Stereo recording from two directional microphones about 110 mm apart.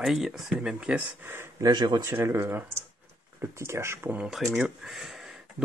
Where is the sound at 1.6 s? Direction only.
40° right (ahead or behind); by 4.1 s 25° right (ahead or behind).